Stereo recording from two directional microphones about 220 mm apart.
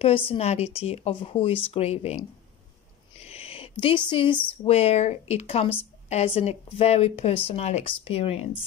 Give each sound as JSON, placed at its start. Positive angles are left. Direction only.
{"t": 0.0, "sound": "speech", "side_deg": 25}
{"t": 3.2, "sound": "a sound", "side_deg": 25}
{"t": 3.8, "sound": "speech", "side_deg": 20}